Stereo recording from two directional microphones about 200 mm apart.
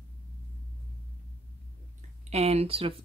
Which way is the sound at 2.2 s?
30° right (ahead or behind).